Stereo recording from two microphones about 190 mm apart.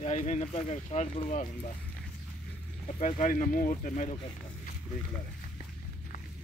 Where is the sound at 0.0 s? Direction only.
35° left (ahead or behind).